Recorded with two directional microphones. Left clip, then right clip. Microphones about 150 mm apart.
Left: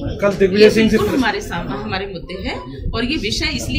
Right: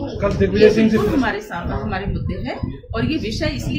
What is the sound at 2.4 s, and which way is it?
Speech, 10° right (ahead or behind).